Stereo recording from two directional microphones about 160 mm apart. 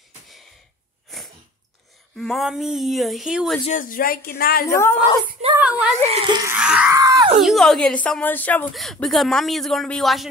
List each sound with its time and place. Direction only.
2.1 s speech: centre (ahead or behind)
3.6 s a woman's voice: 55° left (ahead or behind); by 4.6 s 75° left (ahead or behind)
4.6 s speech: 15° left (ahead or behind)
5.6 s speech: 5° right (ahead or behind)
6.2 s a sound: 25° right (ahead or behind)
6.5 s screaming: 5° right (ahead or behind)
6.9 s speech: 20° right (ahead or behind)
7.3 s speech: centre (ahead or behind)